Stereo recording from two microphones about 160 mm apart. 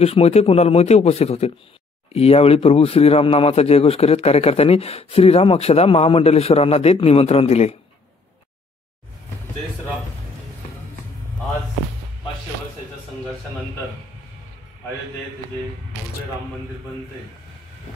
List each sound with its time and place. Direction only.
0.0 s a man's voice: 40° left (ahead or behind)